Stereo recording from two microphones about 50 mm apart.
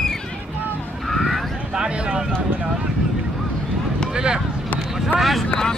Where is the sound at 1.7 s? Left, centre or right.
Centre.